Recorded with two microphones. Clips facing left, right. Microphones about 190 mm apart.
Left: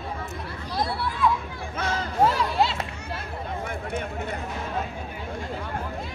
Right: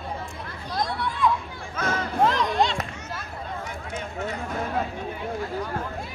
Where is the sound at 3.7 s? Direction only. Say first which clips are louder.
Left 3 dB; 55° left (ahead or behind).